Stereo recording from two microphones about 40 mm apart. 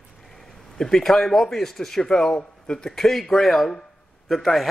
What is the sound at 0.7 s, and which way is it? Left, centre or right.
A man's voice, centre.